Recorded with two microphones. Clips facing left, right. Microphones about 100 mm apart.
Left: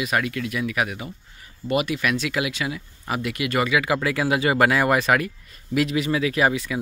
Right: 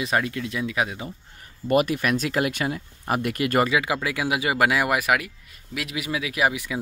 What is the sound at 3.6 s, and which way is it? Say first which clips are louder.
Speech: left 2 dB; 20° right (ahead or behind).